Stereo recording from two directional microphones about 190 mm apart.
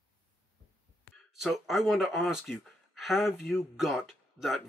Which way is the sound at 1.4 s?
Centre (ahead or behind).